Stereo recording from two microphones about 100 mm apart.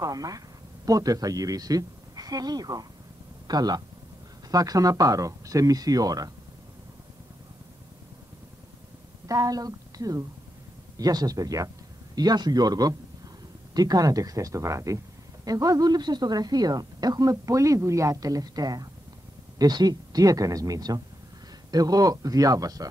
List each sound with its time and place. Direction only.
0.0 s a woman's voice: 35° right (ahead or behind)
9.3 s a woman's voice: 35° right (ahead or behind)